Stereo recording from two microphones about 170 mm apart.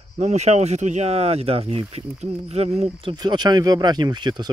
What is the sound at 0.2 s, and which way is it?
Speech, 40° right (ahead or behind).